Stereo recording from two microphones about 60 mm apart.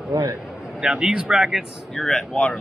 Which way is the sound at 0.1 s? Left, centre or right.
Right.